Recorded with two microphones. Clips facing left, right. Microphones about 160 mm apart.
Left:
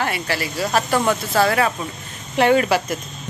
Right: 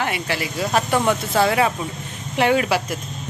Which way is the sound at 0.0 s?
15° right (ahead or behind).